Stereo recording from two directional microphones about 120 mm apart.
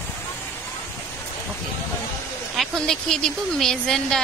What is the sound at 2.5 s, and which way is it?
Speech, centre (ahead or behind).